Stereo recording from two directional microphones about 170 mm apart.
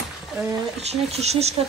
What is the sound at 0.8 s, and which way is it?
Speech, 40° right (ahead or behind).